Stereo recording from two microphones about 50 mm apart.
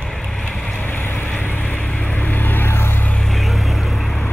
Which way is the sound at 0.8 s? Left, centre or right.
Left.